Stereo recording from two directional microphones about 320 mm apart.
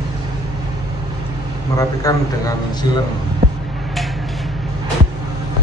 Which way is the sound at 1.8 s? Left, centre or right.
Centre.